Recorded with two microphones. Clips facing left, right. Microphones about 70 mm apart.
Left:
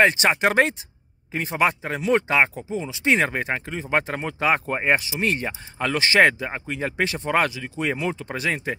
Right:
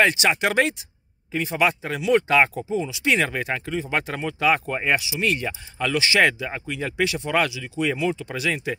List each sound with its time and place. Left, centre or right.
0.0 s speech: left
2.2 s speech: left